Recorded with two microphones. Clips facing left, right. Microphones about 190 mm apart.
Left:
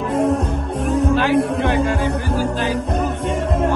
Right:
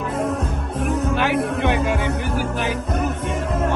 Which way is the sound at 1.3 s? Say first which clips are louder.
Left 3 dB; 65° right (ahead or behind).